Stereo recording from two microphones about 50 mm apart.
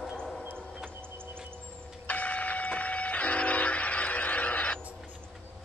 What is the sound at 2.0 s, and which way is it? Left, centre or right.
Vehicle, left.